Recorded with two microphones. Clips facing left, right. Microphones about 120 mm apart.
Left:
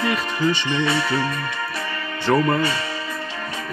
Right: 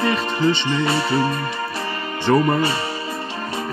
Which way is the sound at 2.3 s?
5° right (ahead or behind).